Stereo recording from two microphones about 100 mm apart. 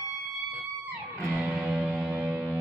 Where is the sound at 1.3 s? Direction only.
5° right (ahead or behind).